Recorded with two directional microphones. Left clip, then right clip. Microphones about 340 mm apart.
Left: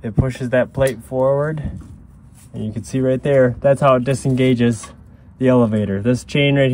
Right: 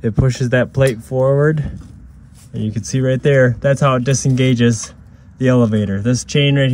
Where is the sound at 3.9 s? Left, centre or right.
Centre.